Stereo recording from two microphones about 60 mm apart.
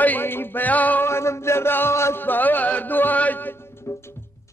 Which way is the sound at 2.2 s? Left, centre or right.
Left.